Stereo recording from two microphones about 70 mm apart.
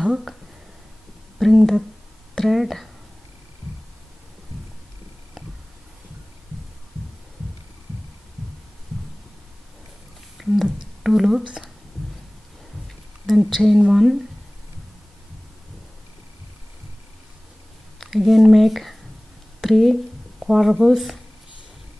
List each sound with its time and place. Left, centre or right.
0.0 s a sound: centre
1.4 s speech: centre
10.3 s a sound: centre
11.4 s speech: centre
13.4 s speech: centre
17.9 s speech: centre